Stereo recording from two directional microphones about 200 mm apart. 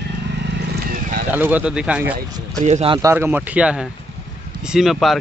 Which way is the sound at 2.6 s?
30° right (ahead or behind).